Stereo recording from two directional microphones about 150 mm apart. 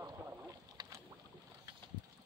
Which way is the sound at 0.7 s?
25° right (ahead or behind).